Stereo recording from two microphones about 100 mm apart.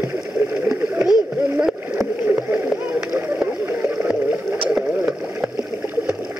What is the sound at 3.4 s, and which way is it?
Boat, 15° right (ahead or behind).